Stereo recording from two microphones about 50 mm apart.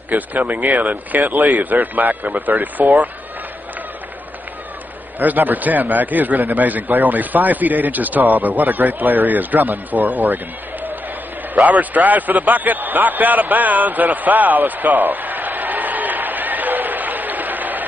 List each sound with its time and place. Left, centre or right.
0.1 s a man's voice: right
5.2 s a man's voice: right
11.5 s a sound: right